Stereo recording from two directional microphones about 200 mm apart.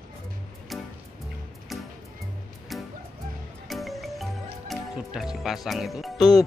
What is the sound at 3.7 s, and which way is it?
Music, centre (ahead or behind).